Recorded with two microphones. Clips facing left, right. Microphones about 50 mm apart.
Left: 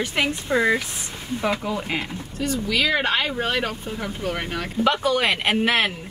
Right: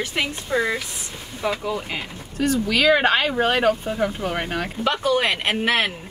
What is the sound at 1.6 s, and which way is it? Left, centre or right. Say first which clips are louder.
Speech: left 1 dB; centre.